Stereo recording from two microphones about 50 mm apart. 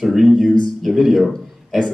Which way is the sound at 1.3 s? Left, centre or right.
Centre.